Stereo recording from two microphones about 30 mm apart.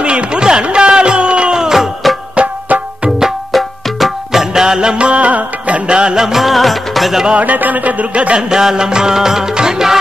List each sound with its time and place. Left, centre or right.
0.0 s a sound: right
0.7 s music: right
1.6 s music: centre
2.3 s music: right
3.5 s music: centre
4.3 s music: centre
4.6 s music: right
4.9 s music: right
5.9 s music: right
6.1 s music: centre
6.5 s music: centre
7.3 s a sound: right
8.4 s music: centre